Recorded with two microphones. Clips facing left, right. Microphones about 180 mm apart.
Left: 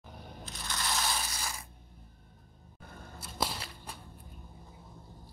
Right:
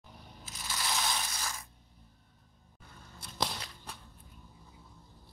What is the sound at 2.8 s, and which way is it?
Scissors, 55° left (ahead or behind).